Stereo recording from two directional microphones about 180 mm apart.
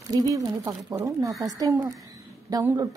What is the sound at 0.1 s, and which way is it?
A woman's voice, 20° right (ahead or behind).